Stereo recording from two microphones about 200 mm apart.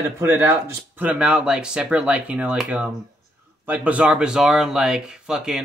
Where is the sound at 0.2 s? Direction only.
10° right (ahead or behind).